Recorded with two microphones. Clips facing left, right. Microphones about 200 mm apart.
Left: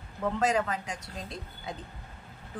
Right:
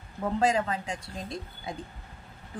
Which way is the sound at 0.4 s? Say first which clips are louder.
Right 2 dB; 30° right (ahead or behind).